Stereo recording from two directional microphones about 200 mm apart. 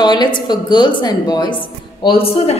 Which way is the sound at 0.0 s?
20° left (ahead or behind).